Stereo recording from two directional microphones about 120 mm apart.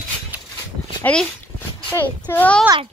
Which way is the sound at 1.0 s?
10° left (ahead or behind).